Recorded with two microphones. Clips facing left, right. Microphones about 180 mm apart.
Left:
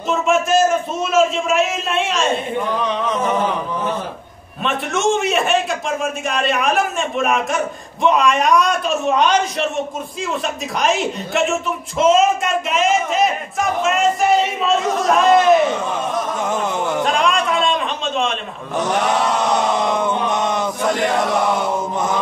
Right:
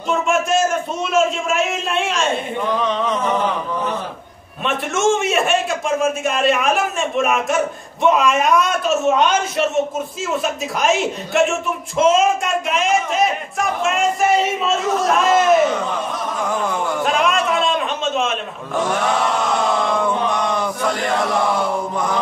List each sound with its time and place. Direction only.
0.1 s a man's voice: centre (ahead or behind)
4.6 s a man's voice: centre (ahead or behind)
16.3 s a sound: 20° left (ahead or behind)
17.0 s a sound: 5° right (ahead or behind)
18.8 s chant: 20° left (ahead or behind)
21.5 s mantra: 20° left (ahead or behind)